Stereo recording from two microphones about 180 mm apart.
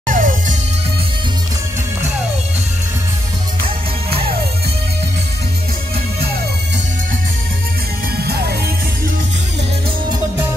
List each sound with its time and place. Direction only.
0.0 s music: 45° right (ahead or behind)
3.6 s music: 30° right (ahead or behind)
8.2 s music: 65° right (ahead or behind)